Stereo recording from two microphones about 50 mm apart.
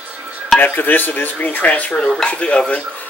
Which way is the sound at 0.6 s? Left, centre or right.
Left.